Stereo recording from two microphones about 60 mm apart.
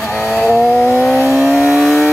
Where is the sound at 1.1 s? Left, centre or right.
Right.